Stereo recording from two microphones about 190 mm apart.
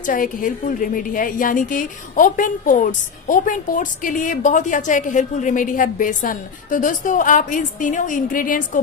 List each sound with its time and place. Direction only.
0.0 s a woman's voice: 45° left (ahead or behind)